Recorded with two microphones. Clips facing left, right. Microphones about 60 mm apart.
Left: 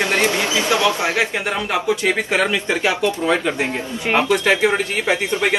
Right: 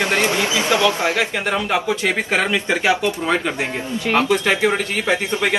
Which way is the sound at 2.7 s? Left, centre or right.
Right.